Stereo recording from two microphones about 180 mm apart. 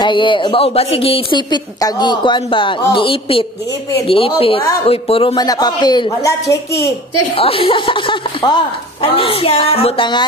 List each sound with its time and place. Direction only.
0.0 s a woman's voice: 25° left (ahead or behind)
7.3 s a woman's voice: 30° left (ahead or behind)